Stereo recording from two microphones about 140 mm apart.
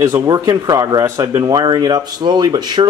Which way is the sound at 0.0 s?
20° right (ahead or behind).